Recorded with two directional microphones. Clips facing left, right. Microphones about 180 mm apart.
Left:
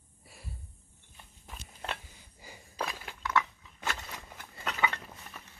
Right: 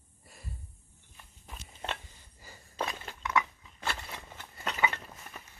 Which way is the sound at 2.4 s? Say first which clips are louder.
Left 2 dB; 15° left (ahead or behind).